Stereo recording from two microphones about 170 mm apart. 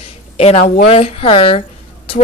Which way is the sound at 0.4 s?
35° left (ahead or behind).